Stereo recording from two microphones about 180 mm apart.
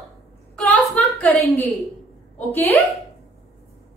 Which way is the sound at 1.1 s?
5° left (ahead or behind).